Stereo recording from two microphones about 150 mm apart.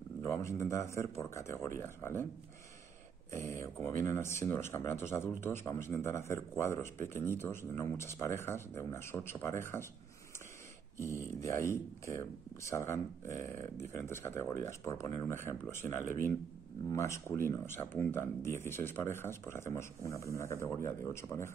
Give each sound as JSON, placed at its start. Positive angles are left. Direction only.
{"t": 0.2, "sound": "speech", "side_deg": 20}
{"t": 3.3, "sound": "speech", "side_deg": 20}
{"t": 11.0, "sound": "speech", "side_deg": 20}